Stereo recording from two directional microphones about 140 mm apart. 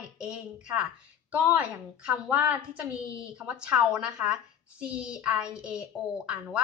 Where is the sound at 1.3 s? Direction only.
10° right (ahead or behind).